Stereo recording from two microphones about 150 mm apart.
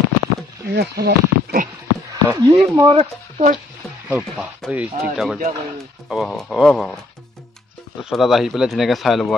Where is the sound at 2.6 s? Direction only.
20° right (ahead or behind).